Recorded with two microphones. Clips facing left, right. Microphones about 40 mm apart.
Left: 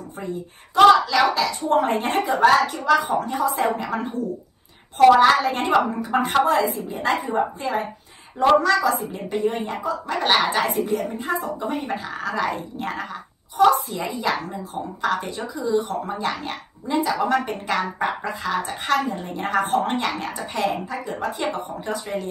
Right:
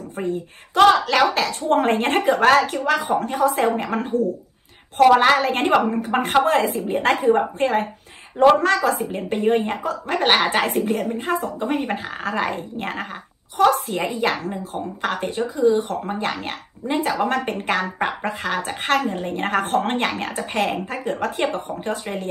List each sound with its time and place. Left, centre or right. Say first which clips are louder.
0.2 s speech: right 5 dB; right